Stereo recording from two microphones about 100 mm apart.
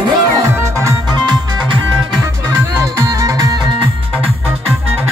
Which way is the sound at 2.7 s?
30° right (ahead or behind).